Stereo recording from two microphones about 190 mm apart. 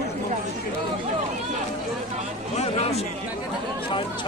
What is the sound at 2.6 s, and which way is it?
Speech, 35° left (ahead or behind).